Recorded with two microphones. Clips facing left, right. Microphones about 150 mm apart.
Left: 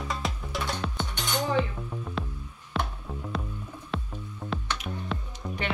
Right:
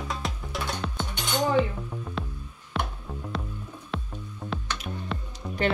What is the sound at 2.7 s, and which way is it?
Music, centre (ahead or behind).